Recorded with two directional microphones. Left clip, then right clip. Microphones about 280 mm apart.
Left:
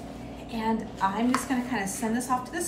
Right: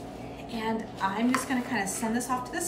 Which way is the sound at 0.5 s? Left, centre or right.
Centre.